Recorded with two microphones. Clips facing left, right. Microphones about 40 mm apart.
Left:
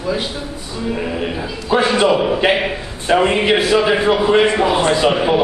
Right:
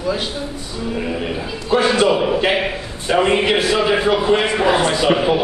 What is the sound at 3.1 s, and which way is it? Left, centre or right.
A man's voice, centre.